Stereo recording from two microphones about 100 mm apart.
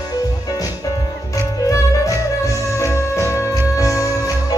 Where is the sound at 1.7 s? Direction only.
30° left (ahead or behind).